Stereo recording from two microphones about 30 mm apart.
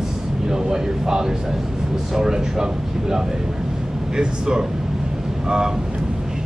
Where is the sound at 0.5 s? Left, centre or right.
Right.